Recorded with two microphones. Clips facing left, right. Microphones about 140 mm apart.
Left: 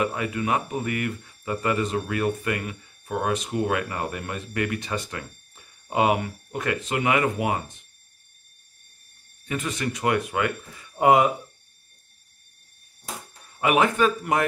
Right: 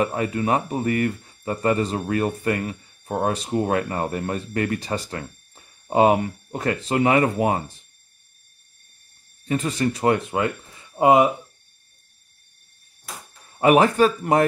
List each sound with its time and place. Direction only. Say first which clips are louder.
0.0 s speech: right 3 dB; 35° right (ahead or behind)
9.5 s speech: right 6 dB; 35° right (ahead or behind)
13.6 s speech: right 5 dB; 35° right (ahead or behind)